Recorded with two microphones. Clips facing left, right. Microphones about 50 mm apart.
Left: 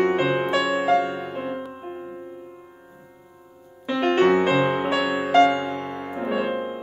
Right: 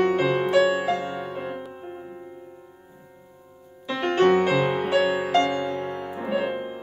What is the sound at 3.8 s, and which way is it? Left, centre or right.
Music, left.